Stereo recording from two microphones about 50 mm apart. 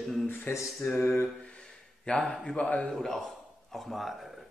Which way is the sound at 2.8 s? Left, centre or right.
Centre.